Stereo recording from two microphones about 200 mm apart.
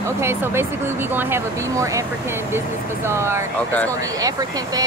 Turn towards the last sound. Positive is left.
turn(degrees=-20)  # may be behind; listen again after turning